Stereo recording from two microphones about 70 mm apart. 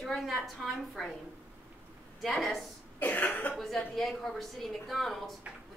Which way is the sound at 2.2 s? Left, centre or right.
Centre.